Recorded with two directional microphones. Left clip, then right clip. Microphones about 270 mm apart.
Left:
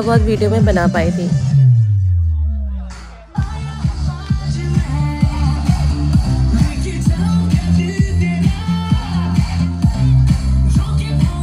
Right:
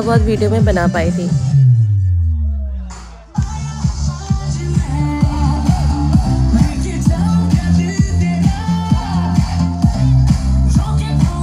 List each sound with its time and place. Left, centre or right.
0.0 s speech: centre
3.7 s music: centre
4.5 s music: right